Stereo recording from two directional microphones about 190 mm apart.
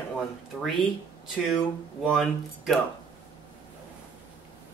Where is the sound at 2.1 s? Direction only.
Centre (ahead or behind).